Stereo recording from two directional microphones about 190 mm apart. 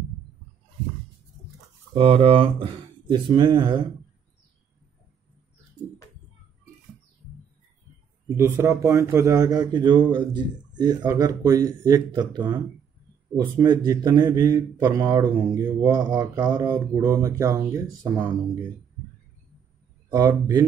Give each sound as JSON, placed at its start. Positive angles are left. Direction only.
{"t": 2.0, "sound": "speech", "side_deg": -30}
{"t": 8.4, "sound": "speech", "side_deg": -15}
{"t": 13.4, "sound": "speech", "side_deg": -20}
{"t": 20.1, "sound": "speech", "side_deg": -20}